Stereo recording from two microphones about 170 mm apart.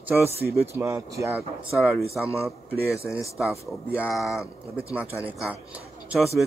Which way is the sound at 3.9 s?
5° right (ahead or behind).